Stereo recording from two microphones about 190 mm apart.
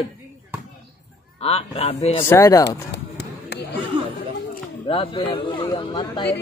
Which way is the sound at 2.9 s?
60° left (ahead or behind).